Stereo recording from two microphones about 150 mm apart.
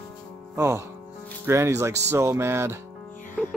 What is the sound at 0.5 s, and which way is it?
Music, 15° right (ahead or behind).